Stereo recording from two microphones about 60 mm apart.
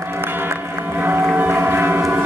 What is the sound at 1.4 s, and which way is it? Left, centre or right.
Boat, right.